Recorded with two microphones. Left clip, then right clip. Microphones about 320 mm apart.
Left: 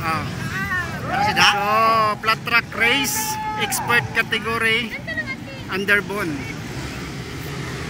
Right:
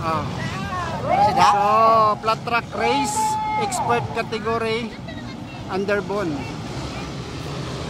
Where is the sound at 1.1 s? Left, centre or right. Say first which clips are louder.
Right 1 dB; centre.